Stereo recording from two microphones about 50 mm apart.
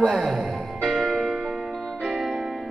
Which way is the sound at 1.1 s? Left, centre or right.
Centre.